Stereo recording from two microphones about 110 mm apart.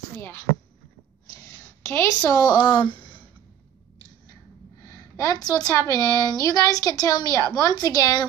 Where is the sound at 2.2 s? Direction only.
35° left (ahead or behind).